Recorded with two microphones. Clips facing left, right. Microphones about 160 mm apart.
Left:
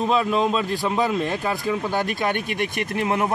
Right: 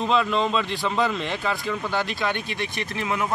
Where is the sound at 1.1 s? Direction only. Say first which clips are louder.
Left 3 dB; 45° left (ahead or behind).